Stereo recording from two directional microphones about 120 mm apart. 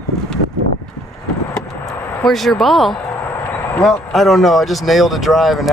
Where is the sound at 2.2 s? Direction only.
Centre (ahead or behind).